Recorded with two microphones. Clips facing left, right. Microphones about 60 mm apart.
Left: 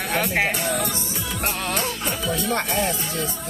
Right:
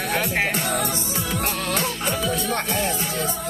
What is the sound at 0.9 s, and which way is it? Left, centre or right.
Music, right.